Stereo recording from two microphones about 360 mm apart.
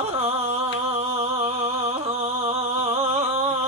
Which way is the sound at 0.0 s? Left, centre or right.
Centre.